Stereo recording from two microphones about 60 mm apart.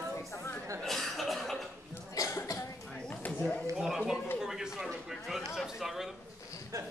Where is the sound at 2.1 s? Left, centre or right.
Left.